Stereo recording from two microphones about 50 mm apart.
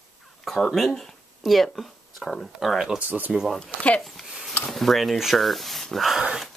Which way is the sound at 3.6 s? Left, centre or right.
Left.